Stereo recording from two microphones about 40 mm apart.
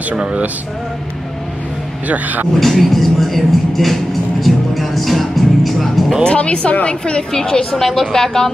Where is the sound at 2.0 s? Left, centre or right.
Right.